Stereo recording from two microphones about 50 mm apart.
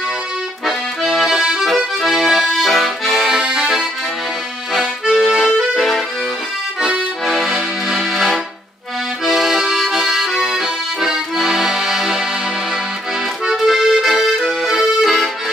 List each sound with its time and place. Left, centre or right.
0.7 s accordion: centre
3.3 s accordion: centre
5.2 s accordion: centre
7.2 s accordion: centre
13.5 s accordion: centre